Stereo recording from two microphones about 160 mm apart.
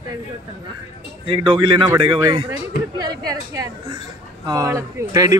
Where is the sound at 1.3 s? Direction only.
30° right (ahead or behind).